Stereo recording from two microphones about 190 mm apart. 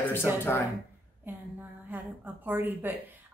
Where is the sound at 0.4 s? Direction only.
10° left (ahead or behind).